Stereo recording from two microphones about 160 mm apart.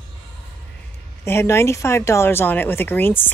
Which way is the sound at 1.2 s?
15° left (ahead or behind).